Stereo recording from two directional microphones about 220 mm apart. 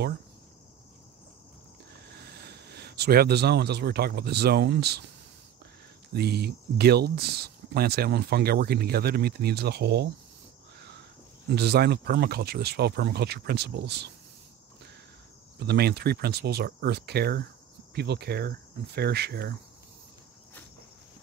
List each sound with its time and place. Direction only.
2.0 s speech: 45° right (ahead or behind)
6.1 s speech: 45° right (ahead or behind)
11.4 s speech: 50° right (ahead or behind)
15.6 s speech: 45° right (ahead or behind)